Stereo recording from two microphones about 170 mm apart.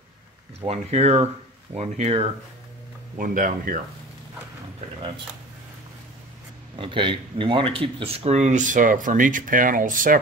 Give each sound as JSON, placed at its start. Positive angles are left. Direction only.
{"t": 0.7, "sound": "speech", "side_deg": -40}
{"t": 3.2, "sound": "speech", "side_deg": -55}
{"t": 6.8, "sound": "speech", "side_deg": -30}